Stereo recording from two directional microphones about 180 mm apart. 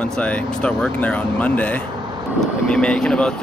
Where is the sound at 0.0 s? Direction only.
5° left (ahead or behind).